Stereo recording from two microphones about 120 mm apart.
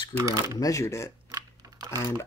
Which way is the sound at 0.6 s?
25° left (ahead or behind).